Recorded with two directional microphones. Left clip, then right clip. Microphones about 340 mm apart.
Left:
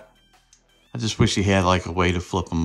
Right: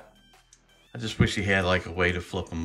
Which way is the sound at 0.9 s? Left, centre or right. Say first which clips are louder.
Left 5 dB; centre.